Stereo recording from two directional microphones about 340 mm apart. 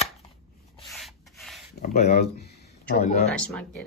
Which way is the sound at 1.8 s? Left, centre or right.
Centre.